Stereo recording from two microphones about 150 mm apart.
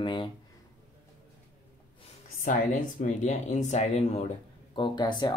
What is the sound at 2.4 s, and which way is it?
Speech, 60° left (ahead or behind).